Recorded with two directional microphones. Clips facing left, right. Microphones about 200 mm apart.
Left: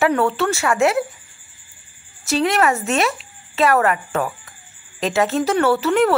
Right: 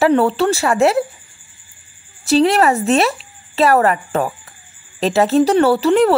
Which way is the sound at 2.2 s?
30° right (ahead or behind).